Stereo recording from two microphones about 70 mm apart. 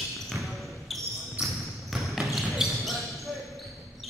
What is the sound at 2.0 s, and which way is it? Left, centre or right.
Basketball bounce, centre.